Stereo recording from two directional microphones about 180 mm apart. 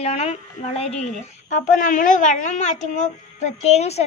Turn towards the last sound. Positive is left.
turn(degrees=35)  # may be behind; listen again after turning